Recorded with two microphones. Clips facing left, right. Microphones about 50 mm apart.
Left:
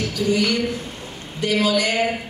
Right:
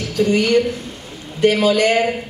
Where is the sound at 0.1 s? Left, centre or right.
Right.